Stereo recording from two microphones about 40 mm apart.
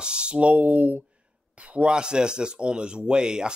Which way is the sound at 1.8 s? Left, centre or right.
Right.